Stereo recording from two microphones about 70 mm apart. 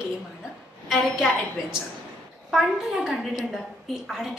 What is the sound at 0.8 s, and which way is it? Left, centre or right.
A woman's voice, centre.